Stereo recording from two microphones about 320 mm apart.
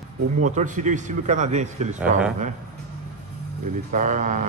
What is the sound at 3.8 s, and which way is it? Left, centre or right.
Speech, right.